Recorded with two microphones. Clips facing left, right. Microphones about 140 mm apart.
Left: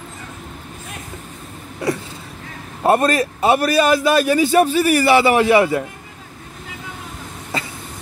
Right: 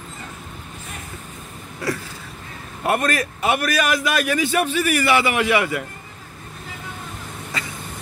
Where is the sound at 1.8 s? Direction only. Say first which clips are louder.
Left 4 dB; 20° left (ahead or behind).